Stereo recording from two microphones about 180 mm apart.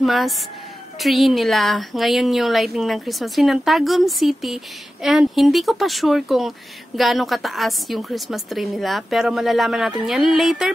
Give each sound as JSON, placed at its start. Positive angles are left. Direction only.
{"t": 0.0, "sound": "a woman's voice", "side_deg": 0}